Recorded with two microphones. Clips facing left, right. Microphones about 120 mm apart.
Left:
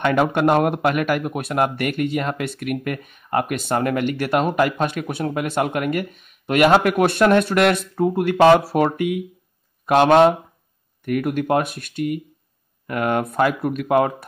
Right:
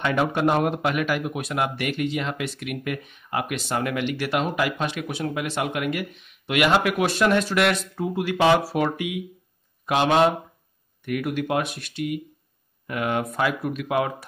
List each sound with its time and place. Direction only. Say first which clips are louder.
0.0 s speech: left 4 dB; 55° left (ahead or behind)